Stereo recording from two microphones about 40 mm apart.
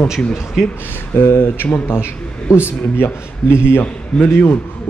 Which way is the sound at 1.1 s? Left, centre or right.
Left.